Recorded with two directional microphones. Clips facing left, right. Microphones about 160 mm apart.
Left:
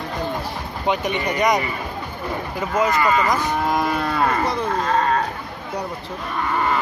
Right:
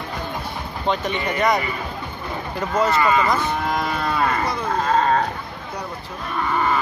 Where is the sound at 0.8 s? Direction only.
15° left (ahead or behind).